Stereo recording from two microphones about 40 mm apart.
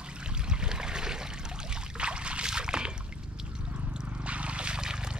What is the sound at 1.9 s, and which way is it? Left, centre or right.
Boat, right.